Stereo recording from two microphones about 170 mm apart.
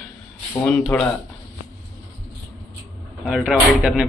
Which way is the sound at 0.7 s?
5° left (ahead or behind).